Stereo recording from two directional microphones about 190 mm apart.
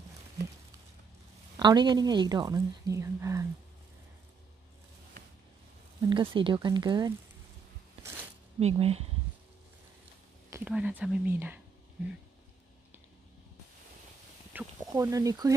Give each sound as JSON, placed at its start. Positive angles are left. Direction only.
{"t": 1.6, "sound": "a woman's voice", "side_deg": -25}
{"t": 5.9, "sound": "a woman's voice", "side_deg": -25}
{"t": 8.5, "sound": "speech", "side_deg": -30}
{"t": 10.5, "sound": "speech", "side_deg": -5}
{"t": 14.5, "sound": "a sound", "side_deg": -5}
{"t": 14.9, "sound": "speech", "side_deg": -15}